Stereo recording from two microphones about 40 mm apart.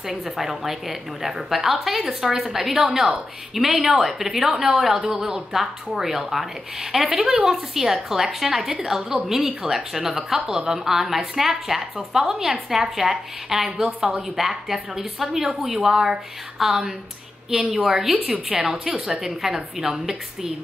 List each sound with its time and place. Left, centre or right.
0.1 s a woman's voice: centre
7.2 s a woman's voice: centre
18.2 s a woman's voice: right
19.1 s a woman's voice: centre